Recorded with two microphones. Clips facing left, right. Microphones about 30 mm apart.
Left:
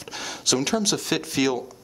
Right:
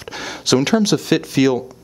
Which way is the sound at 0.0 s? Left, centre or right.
Centre.